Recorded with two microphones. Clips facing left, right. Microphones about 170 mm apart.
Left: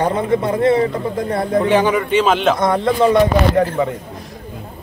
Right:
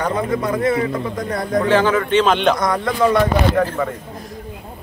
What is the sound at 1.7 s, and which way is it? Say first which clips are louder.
Speech: right 2 dB; 15° left (ahead or behind).